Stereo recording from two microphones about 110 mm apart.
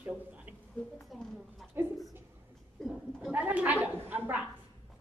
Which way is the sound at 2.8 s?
5° left (ahead or behind).